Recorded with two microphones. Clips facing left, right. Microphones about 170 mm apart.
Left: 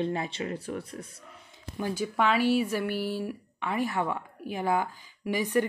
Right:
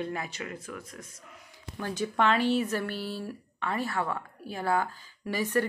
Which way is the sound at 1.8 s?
10° left (ahead or behind).